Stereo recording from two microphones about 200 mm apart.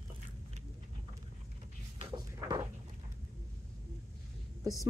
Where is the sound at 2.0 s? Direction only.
20° right (ahead or behind).